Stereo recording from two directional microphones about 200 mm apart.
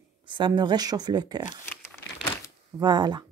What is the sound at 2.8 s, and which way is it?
Speech, 20° right (ahead or behind).